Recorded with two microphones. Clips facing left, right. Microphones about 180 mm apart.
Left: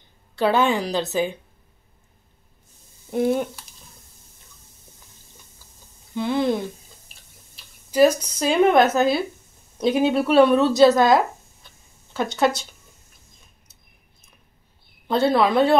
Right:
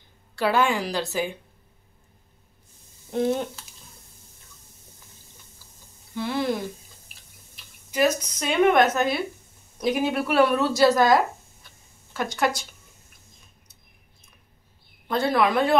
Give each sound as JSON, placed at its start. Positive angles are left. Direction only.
{"t": 0.4, "sound": "a woman's voice", "side_deg": 20}
{"t": 3.1, "sound": "speech", "side_deg": 10}
{"t": 6.1, "sound": "a woman's voice", "side_deg": 20}
{"t": 7.5, "sound": "a woman's voice", "side_deg": 35}
{"t": 12.4, "sound": "a woman's voice", "side_deg": 25}
{"t": 15.0, "sound": "a woman's voice", "side_deg": 25}